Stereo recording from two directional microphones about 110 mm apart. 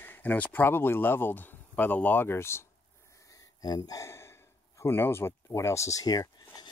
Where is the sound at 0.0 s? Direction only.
15° left (ahead or behind).